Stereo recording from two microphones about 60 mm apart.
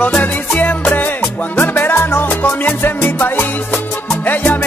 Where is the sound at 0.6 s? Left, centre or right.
Left.